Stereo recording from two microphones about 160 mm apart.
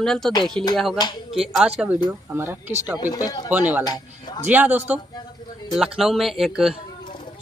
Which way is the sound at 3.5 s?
10° right (ahead or behind).